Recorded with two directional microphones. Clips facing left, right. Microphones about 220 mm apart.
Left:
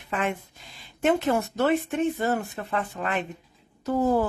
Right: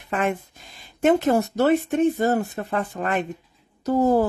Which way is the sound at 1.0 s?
40° right (ahead or behind).